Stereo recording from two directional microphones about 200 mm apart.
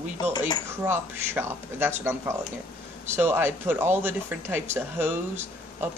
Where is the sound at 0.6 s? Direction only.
10° right (ahead or behind).